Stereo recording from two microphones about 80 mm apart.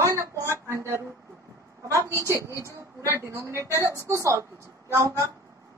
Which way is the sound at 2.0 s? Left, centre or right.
Right.